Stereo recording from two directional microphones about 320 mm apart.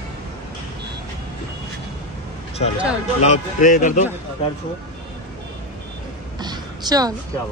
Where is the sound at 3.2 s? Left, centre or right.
Left.